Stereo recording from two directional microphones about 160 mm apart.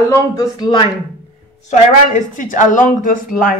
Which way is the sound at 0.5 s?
30° left (ahead or behind).